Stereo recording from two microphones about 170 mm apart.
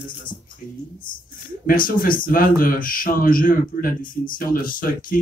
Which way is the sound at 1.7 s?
55° left (ahead or behind).